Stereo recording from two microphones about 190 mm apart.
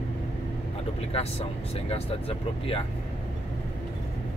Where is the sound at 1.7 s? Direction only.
30° left (ahead or behind).